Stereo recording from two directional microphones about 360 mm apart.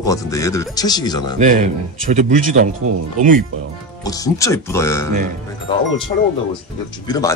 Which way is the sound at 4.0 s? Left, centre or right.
Centre.